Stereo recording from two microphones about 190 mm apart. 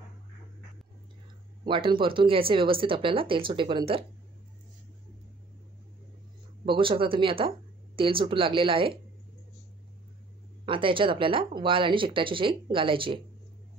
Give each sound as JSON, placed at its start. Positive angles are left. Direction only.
{"t": 1.6, "sound": "speech", "side_deg": -25}
{"t": 6.6, "sound": "speech", "side_deg": -25}
{"t": 10.6, "sound": "speech", "side_deg": -25}